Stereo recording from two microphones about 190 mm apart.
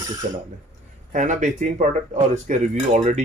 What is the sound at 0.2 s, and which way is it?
Speech, 40° right (ahead or behind).